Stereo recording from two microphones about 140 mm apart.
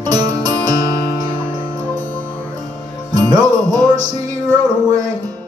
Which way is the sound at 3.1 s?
30° right (ahead or behind).